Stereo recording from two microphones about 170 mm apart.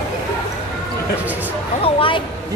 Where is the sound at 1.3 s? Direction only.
10° right (ahead or behind).